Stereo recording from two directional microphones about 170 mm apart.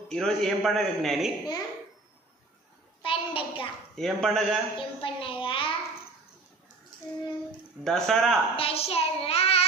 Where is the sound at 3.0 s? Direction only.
30° left (ahead or behind).